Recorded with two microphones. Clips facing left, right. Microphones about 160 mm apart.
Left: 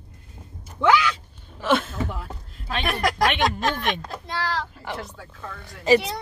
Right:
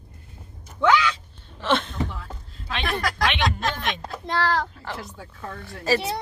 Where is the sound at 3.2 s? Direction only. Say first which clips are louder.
Left 3 dB; 45° left (ahead or behind).